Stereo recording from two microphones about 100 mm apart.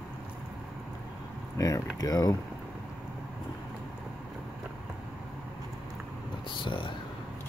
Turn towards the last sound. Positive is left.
turn(degrees=60)  # may be behind; listen again after turning